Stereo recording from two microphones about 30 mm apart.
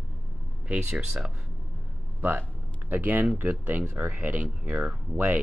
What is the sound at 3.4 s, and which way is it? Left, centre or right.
Speech, right.